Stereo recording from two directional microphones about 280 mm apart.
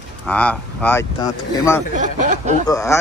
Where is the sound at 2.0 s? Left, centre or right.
Right.